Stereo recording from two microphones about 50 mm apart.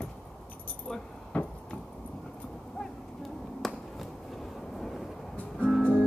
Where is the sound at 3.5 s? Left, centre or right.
Centre.